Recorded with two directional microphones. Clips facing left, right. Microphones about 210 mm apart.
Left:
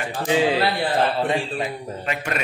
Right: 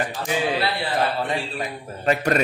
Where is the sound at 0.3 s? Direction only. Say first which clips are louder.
Left 5 dB; 25° left (ahead or behind).